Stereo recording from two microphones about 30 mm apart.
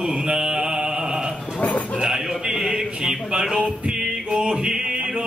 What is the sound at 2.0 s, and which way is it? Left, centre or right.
Music, right.